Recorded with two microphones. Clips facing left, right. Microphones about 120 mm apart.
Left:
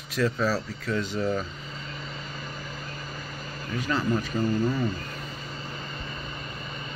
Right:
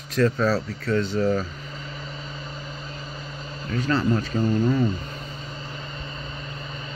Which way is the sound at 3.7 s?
10° left (ahead or behind).